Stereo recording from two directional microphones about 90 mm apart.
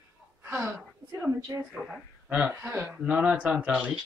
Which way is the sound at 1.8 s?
10° right (ahead or behind).